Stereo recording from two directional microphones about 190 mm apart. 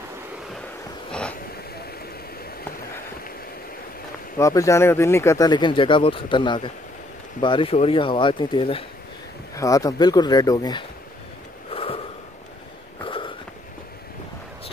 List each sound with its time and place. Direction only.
4.4 s speech: 15° left (ahead or behind)
9.6 s speech: 15° left (ahead or behind)
11.7 s gasp: 30° left (ahead or behind)
13.0 s a sound: 25° left (ahead or behind)